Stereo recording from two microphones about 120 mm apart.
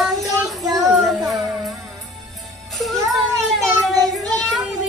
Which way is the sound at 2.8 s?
Centre (ahead or behind).